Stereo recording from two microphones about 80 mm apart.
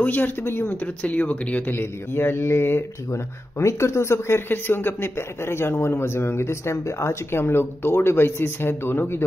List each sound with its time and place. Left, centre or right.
0.0 s speech: left
1.8 s speech: left